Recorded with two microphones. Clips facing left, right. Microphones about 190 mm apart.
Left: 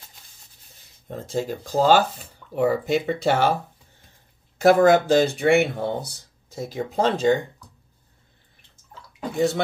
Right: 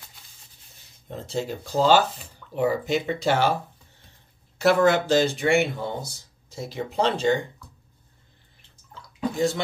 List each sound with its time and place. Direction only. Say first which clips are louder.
1.1 s speech: left 2 dB; 50° left (ahead or behind)
4.6 s speech: left 4 dB; 50° left (ahead or behind)
9.3 s speech: left 3 dB; 60° left (ahead or behind)